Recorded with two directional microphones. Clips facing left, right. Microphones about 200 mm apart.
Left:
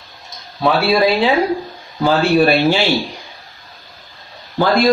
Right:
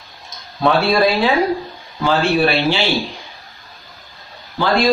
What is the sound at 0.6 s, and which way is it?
Speech, 5° left (ahead or behind).